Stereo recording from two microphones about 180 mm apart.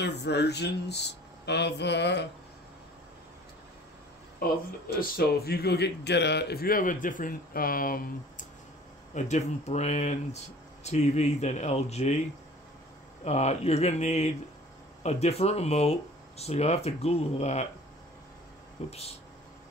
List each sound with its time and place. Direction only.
0.0 s speech: 70° left (ahead or behind)
4.4 s speech: 55° left (ahead or behind)
9.1 s speech: 40° left (ahead or behind)
13.2 s speech: 40° left (ahead or behind)
18.9 s speech: 35° left (ahead or behind)